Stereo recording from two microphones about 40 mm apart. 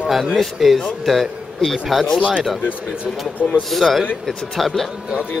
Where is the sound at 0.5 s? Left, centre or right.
Centre.